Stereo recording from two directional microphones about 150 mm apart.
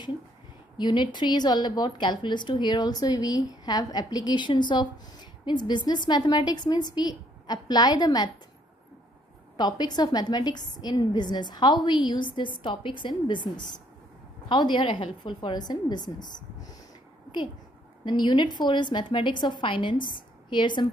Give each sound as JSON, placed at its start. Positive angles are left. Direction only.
{"t": 0.7, "sound": "a woman's voice", "side_deg": 30}
{"t": 9.6, "sound": "a woman's voice", "side_deg": 25}
{"t": 18.0, "sound": "a woman's voice", "side_deg": 30}